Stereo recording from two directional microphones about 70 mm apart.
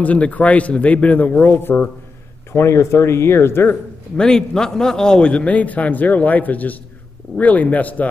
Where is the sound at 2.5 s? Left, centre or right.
Left.